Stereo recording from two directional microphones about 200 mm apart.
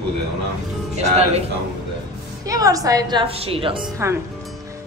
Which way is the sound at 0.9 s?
30° right (ahead or behind).